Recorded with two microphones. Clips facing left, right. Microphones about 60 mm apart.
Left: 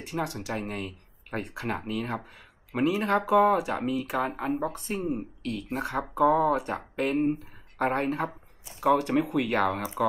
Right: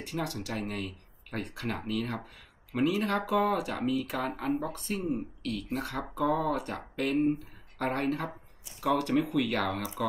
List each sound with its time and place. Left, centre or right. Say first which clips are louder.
0.0 s speech: left 3 dB; centre